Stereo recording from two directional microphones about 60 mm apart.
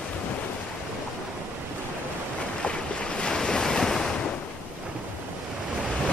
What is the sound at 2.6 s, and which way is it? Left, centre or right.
Waves, centre.